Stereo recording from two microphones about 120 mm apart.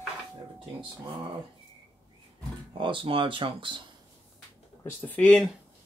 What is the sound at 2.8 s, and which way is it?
Speech, 45° right (ahead or behind).